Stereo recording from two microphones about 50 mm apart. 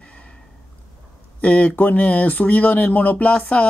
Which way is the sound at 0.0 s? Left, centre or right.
Left.